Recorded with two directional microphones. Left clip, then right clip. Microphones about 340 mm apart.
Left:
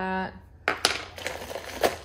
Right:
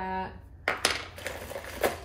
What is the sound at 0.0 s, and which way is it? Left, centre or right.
Coin, left.